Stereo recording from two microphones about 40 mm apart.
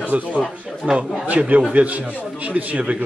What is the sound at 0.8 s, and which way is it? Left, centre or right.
A man's voice, right.